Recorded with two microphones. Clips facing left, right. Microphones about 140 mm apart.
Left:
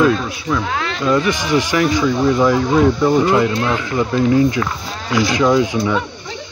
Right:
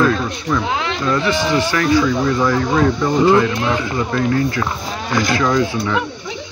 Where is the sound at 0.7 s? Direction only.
20° right (ahead or behind).